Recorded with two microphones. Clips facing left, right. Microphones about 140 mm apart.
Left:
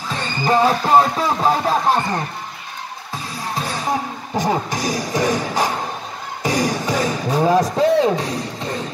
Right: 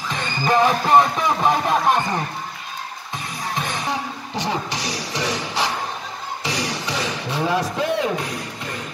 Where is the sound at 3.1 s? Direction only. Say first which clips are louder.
Left 1 dB; 35° left (ahead or behind).